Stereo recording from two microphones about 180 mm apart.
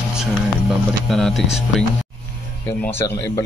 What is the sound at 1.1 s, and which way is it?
Speech, centre (ahead or behind).